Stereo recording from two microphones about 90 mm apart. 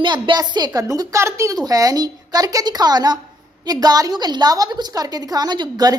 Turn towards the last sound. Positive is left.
turn(degrees=-55)  # may be behind; listen again after turning